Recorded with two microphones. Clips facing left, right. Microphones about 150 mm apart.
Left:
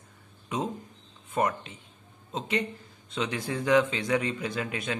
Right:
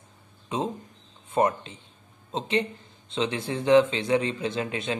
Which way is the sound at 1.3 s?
30° right (ahead or behind).